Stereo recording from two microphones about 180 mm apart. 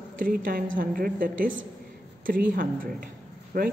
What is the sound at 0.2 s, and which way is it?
A woman's voice, 55° right (ahead or behind).